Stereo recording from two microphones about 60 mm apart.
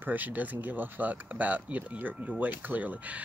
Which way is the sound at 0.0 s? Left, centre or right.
Right.